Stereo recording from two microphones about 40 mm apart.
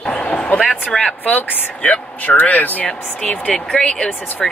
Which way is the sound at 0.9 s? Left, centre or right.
Centre.